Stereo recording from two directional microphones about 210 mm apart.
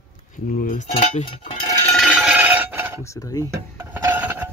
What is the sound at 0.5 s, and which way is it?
Speech, 40° left (ahead or behind).